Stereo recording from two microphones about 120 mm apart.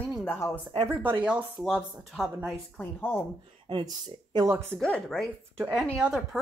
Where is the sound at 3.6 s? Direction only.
40° right (ahead or behind).